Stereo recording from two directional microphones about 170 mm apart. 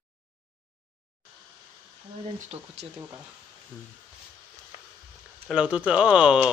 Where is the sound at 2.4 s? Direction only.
40° right (ahead or behind).